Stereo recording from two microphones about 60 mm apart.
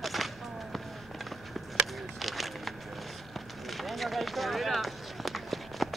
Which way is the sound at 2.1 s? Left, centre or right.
Centre.